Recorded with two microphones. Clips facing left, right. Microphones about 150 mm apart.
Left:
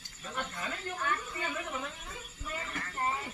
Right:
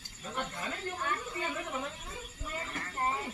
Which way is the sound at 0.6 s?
25° right (ahead or behind).